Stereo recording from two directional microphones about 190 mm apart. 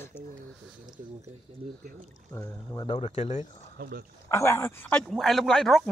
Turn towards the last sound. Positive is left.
turn(degrees=0)  # may be behind; listen again after turning